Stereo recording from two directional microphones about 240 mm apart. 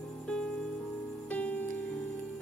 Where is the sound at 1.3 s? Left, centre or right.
Centre.